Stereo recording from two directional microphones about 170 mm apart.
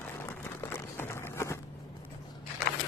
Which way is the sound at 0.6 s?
15° left (ahead or behind).